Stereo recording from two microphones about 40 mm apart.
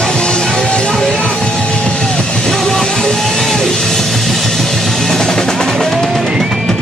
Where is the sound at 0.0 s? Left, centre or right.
Centre.